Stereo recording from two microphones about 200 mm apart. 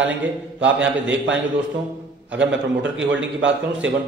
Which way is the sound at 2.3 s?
65° right (ahead or behind).